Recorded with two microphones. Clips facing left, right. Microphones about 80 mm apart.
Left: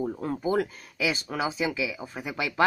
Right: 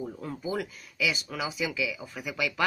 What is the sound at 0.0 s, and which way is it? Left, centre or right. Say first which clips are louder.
Speech: left 6 dB; left.